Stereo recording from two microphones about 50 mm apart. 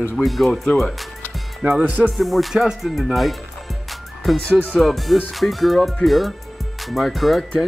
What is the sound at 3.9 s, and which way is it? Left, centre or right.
Music, centre.